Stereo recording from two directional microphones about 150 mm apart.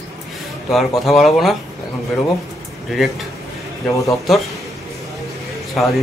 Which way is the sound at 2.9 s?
Centre (ahead or behind).